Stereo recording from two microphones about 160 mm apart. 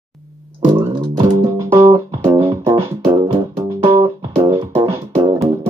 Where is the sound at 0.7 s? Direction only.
30° right (ahead or behind).